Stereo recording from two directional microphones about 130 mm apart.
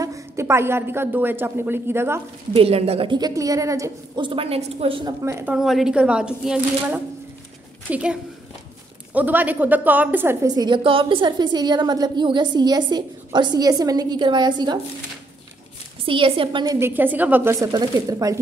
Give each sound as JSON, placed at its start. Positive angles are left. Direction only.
{"t": 0.0, "sound": "a woman's voice", "side_deg": -25}
{"t": 2.5, "sound": "a woman's voice", "side_deg": -50}
{"t": 3.2, "sound": "speech", "side_deg": -30}
{"t": 4.2, "sound": "a woman's voice", "side_deg": -45}
{"t": 5.2, "sound": "speech", "side_deg": -20}
{"t": 5.5, "sound": "a woman's voice", "side_deg": 0}
{"t": 10.4, "sound": "a woman's voice", "side_deg": -30}
{"t": 16.1, "sound": "a woman's voice", "side_deg": -40}
{"t": 16.8, "sound": "a woman's voice", "side_deg": -15}
{"t": 17.6, "sound": "speech", "side_deg": -30}